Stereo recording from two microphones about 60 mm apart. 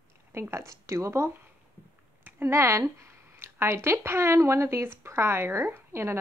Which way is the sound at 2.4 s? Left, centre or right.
Right.